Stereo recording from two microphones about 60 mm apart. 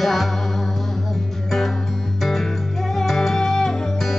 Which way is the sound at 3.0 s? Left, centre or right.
Centre.